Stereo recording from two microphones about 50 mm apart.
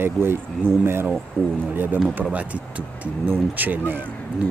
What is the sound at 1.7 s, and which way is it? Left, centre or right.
Speech, right.